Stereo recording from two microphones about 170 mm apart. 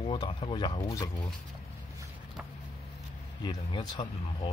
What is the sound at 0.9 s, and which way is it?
Speech, 20° left (ahead or behind).